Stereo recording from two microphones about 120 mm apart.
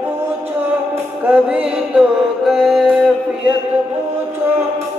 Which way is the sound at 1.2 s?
10° right (ahead or behind).